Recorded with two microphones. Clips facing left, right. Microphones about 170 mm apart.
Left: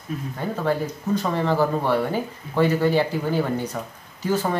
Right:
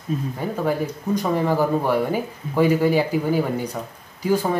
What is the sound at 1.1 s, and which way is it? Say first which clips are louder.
Speech: right 1 dB; 15° right (ahead or behind).